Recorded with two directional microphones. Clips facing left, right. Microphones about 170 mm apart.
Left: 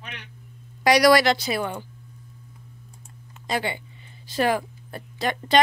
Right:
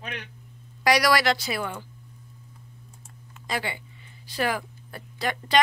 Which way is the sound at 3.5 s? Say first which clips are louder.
Left 4 dB; 25° left (ahead or behind).